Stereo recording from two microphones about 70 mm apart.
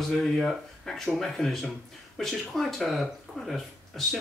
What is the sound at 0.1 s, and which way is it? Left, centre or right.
Speech, centre.